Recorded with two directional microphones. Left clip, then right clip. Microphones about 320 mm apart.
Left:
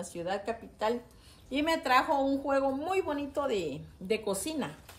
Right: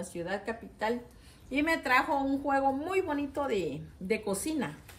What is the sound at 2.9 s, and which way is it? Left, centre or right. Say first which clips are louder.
A woman's voice: even; centre.